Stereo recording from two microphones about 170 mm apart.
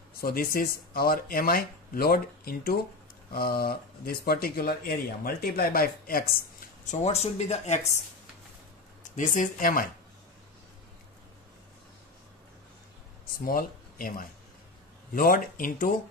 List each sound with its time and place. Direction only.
0.2 s speech: 60° left (ahead or behind)
6.9 s speech: 40° left (ahead or behind)
9.1 s speech: 50° left (ahead or behind)
13.5 s speech: 55° left (ahead or behind)